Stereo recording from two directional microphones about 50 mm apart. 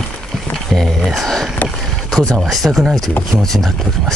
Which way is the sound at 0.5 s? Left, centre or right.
Centre.